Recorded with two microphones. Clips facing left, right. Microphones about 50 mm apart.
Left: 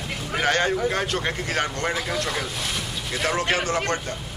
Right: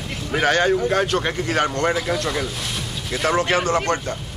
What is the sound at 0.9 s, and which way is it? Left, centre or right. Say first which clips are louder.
Speech: right 5 dB; right.